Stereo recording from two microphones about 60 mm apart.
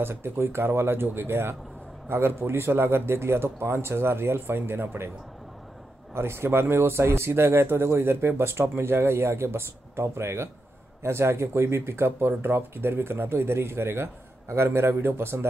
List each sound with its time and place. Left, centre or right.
0.0 s speech: right
6.1 s speech: right